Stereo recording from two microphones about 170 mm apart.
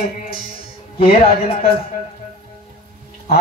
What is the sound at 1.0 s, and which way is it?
Speech, 35° left (ahead or behind).